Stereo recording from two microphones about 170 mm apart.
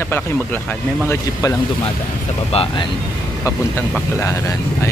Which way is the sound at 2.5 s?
35° left (ahead or behind).